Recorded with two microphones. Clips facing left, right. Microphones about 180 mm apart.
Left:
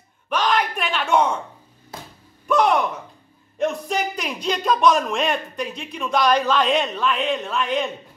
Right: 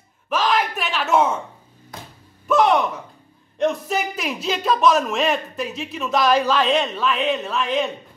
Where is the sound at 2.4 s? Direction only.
Centre (ahead or behind).